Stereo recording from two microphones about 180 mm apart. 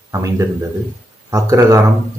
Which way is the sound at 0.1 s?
15° right (ahead or behind).